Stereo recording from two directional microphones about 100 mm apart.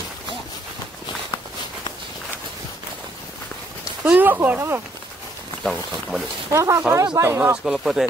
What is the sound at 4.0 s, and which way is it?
Speech, 20° right (ahead or behind).